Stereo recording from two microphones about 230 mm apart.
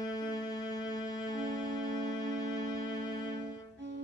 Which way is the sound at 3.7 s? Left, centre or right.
Right.